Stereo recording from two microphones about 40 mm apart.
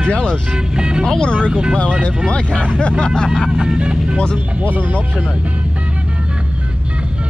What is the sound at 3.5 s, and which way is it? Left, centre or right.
Speech, centre.